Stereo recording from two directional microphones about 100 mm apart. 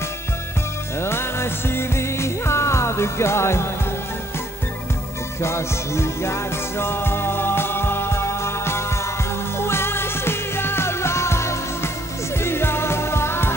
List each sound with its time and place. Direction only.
0.9 s music: 25° left (ahead or behind)
5.4 s music: 25° left (ahead or behind)